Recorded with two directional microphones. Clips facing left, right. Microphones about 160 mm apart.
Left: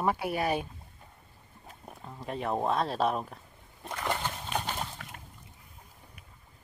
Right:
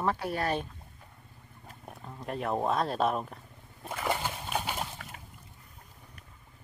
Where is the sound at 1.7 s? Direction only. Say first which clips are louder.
Even; centre (ahead or behind).